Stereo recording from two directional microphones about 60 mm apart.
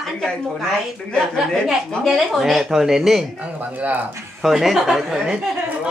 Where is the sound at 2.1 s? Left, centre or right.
Centre.